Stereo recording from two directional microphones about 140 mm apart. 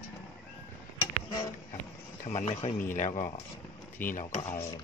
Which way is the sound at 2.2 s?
50° left (ahead or behind).